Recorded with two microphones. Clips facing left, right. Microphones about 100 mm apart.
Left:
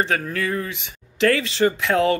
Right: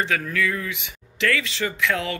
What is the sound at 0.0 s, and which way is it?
Speech, 35° left (ahead or behind).